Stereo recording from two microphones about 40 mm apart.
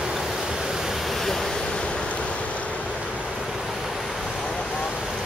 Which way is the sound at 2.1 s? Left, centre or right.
Left.